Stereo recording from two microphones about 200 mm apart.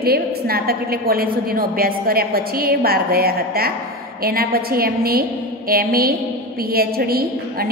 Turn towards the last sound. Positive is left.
turn(degrees=-50)  # may be behind; listen again after turning